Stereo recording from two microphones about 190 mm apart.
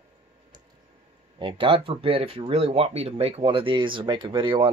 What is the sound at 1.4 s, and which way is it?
Speech, 25° right (ahead or behind).